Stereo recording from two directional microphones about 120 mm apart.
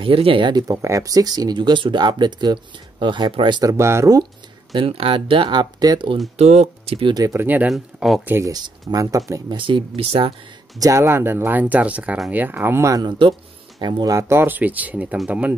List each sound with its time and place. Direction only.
0.0 s speech: 50° right (ahead or behind)
3.7 s speech: 25° right (ahead or behind)
4.7 s speech: 50° right (ahead or behind)
6.3 s speech: 65° right (ahead or behind)
7.2 s speech: 25° right (ahead or behind)
7.4 s speech: 15° right (ahead or behind)
7.7 s speech: centre (ahead or behind)
8.5 s speech: 30° right (ahead or behind)
9.6 s speech: 45° right (ahead or behind)
10.8 s speech: 25° right (ahead or behind)
13.7 s speech: 40° right (ahead or behind)
14.1 s speech: 20° right (ahead or behind)